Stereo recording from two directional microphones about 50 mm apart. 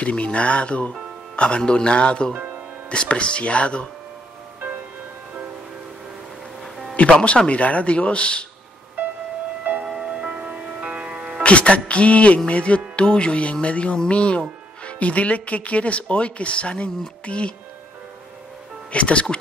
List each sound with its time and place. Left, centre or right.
0.0 s speech: left
1.3 s music: left
1.6 s speech: centre
6.6 s music: centre
7.0 s speech: left
9.8 s music: centre
11.4 s speech: left
18.9 s speech: left